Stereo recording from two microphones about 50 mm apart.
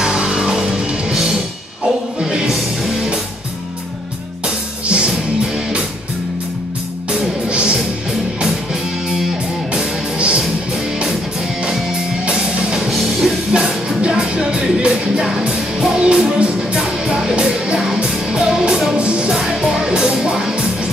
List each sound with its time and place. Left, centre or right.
0.0 s music: centre
4.8 s music: right
7.1 s music: centre
10.1 s music: right
12.3 s music: centre
12.9 s music: centre
13.5 s music: centre
18.9 s music: right